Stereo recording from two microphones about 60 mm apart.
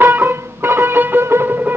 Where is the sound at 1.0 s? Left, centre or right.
Right.